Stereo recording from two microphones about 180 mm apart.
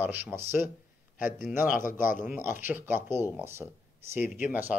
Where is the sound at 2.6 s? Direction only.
10° right (ahead or behind).